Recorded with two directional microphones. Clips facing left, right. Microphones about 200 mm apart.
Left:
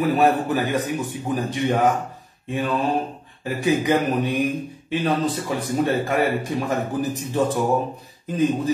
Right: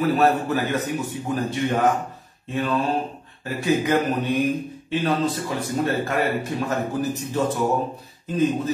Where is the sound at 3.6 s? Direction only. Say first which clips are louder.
Left 1 dB; 15° left (ahead or behind).